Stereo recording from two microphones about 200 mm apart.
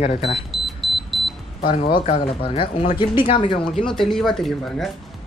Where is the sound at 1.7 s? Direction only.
25° left (ahead or behind).